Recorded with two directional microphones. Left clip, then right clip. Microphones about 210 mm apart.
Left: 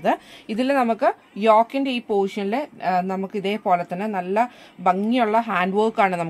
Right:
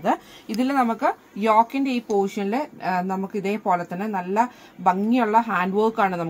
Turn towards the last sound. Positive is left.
turn(degrees=35)  # may be behind; listen again after turning